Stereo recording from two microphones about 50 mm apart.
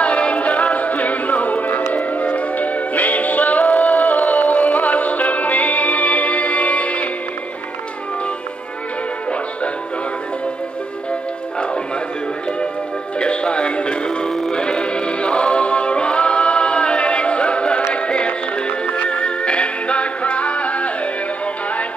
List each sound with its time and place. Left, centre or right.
0.0 s music: left
13.2 s music: left
14.5 s a capella: centre
17.9 s music: left